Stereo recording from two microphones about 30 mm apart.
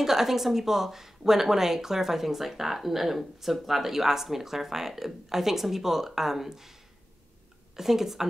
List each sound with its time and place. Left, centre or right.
0.0 s speech: centre
7.7 s speech: centre